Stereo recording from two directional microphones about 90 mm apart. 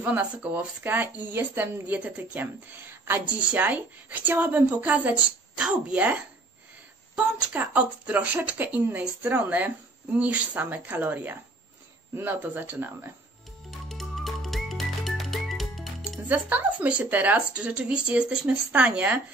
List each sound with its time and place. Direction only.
0.0 s a woman's voice: 15° right (ahead or behind)
7.5 s a woman's voice: 15° right (ahead or behind)
13.7 s music: centre (ahead or behind)
16.3 s a woman's voice: 20° right (ahead or behind)